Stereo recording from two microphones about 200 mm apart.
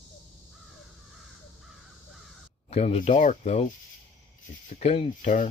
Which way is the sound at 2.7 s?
30° left (ahead or behind).